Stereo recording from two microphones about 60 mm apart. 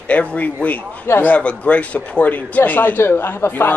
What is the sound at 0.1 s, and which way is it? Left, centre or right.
A man's voice, left.